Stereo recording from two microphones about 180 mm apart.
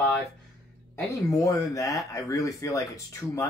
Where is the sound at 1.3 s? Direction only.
20° left (ahead or behind).